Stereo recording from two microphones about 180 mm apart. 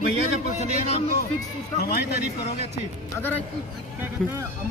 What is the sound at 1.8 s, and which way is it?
Speech, 60° left (ahead or behind).